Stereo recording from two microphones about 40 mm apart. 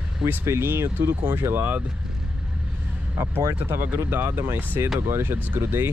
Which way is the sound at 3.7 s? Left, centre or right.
Right.